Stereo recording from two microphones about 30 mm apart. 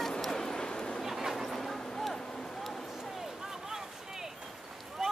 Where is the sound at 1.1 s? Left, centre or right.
Centre.